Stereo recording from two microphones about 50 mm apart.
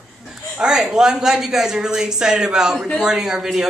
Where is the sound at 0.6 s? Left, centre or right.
Centre.